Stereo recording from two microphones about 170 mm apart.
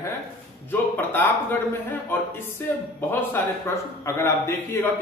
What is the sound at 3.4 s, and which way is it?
Speech, 15° left (ahead or behind).